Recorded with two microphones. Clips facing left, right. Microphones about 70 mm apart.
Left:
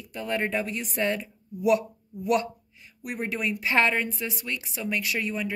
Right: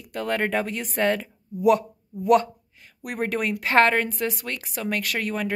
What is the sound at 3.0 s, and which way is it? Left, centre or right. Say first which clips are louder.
A woman's voice: right 4 dB; right.